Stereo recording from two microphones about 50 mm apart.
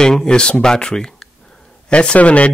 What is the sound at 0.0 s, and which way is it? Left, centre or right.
Speech, centre.